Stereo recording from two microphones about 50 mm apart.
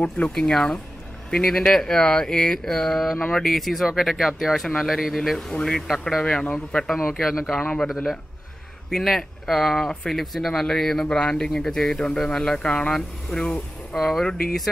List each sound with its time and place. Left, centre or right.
0.0 s speech: left
0.4 s speech: centre
5.5 s speech: centre
5.8 s speech: centre
6.5 s speech: left
7.1 s speech: centre
8.9 s speech: centre
11.1 s speech: centre
13.9 s speech: centre